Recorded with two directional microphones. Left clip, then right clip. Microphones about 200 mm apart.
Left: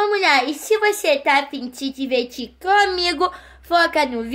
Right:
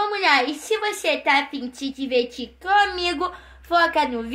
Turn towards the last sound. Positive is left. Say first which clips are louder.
# left 2 dB
turn(degrees=60)  # may be behind; listen again after turning